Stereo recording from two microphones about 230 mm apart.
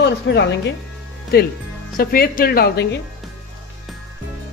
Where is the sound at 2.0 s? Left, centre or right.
Left.